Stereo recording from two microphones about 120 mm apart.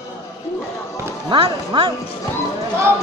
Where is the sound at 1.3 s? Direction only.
45° right (ahead or behind).